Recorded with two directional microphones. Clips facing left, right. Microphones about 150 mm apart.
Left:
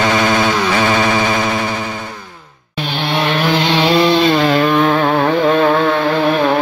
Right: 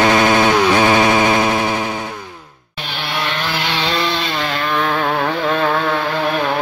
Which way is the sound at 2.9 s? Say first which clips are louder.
Left 6 dB; 25° left (ahead or behind).